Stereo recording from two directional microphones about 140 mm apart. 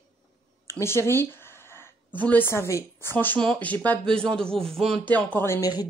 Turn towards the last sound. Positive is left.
turn(degrees=15)  # may be behind; listen again after turning